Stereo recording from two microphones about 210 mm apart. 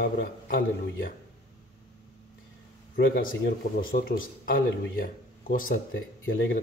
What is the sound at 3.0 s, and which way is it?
Speech, 45° left (ahead or behind).